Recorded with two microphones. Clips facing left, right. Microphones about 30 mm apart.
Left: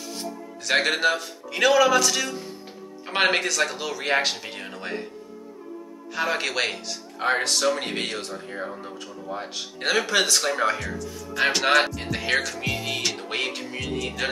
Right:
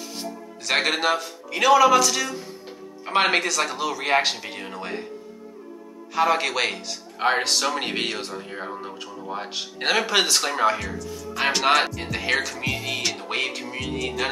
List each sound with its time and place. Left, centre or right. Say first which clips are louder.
0.7 s music: even; centre
6.1 s music: right 4 dB; centre
7.2 s speech: right 1 dB; centre
10.9 s music: right 1 dB; centre